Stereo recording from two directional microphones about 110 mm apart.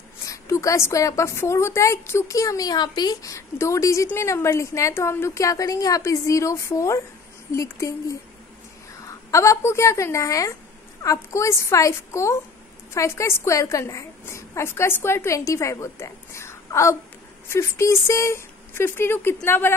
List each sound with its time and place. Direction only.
0.2 s a woman's voice: 30° left (ahead or behind)